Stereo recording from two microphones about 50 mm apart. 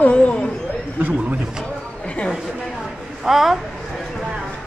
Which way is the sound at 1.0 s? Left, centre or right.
Right.